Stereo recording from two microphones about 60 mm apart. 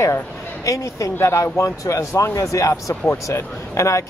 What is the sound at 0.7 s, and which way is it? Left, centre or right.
Speech, left.